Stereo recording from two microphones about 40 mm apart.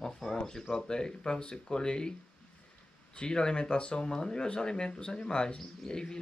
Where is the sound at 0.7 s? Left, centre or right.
Centre.